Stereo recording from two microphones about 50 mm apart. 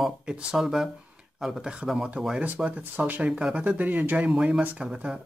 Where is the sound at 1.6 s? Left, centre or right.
Centre.